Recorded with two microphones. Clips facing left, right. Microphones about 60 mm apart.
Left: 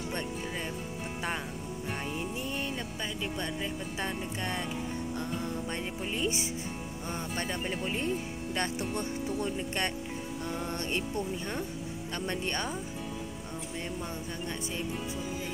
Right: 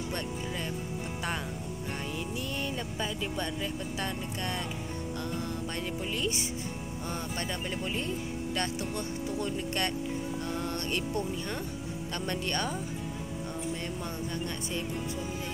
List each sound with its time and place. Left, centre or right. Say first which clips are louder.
2.0 s music: even; left
2.4 s music: even; centre
3.0 s speech: right 3 dB; centre
3.6 s speech: even; left
5.8 s speech: even; left